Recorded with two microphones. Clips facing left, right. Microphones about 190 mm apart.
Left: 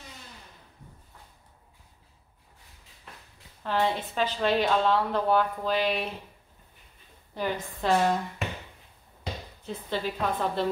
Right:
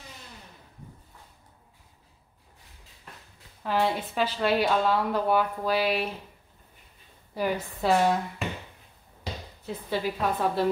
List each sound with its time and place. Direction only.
3.6 s a woman's voice: 10° right (ahead or behind)
7.3 s a woman's voice: 10° right (ahead or behind)
9.7 s a woman's voice: 10° right (ahead or behind)